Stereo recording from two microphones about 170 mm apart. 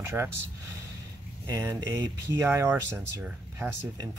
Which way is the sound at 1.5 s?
15° right (ahead or behind).